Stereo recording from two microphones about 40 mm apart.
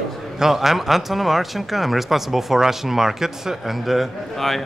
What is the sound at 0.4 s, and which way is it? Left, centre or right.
Speech, centre.